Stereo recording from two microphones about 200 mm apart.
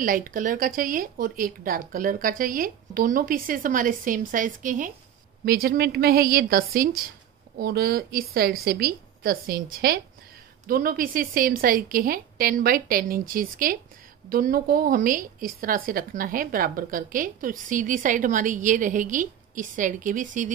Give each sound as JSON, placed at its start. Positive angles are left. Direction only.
{"t": 0.0, "sound": "a woman's voice", "side_deg": -45}